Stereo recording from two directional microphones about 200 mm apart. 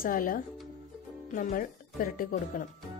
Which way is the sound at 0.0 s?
45° left (ahead or behind).